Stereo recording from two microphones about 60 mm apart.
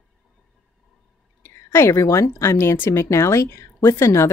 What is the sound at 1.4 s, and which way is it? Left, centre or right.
A woman's voice, left.